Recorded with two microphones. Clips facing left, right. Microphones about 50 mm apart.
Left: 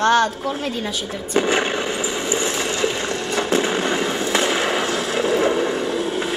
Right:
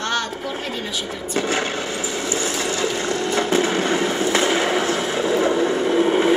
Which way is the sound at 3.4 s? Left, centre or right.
Left.